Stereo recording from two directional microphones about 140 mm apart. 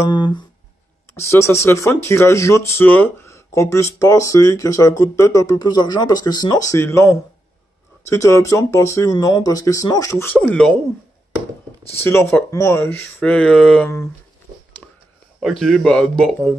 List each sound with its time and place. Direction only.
0.0 s speech: 35° left (ahead or behind)
1.1 s speech: 20° left (ahead or behind)
12.0 s speech: 20° left (ahead or behind)
15.4 s speech: centre (ahead or behind)